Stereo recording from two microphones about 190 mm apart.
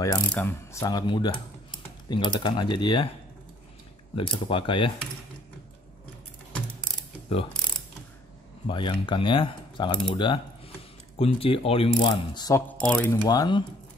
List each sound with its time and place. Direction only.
0.3 s speech: 10° left (ahead or behind)
4.1 s speech: 25° left (ahead or behind)
7.3 s pulleys: 30° left (ahead or behind)
8.6 s speech: 25° left (ahead or behind); by 13.2 s 5° left (ahead or behind)
13.2 s speech: 20° left (ahead or behind)